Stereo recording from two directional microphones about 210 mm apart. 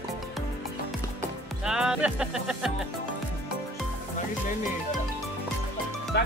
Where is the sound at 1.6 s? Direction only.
5° right (ahead or behind).